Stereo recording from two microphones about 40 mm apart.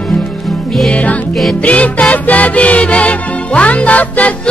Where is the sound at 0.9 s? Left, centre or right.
Left.